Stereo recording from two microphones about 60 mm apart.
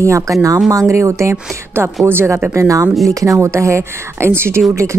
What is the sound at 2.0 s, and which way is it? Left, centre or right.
Speech, right.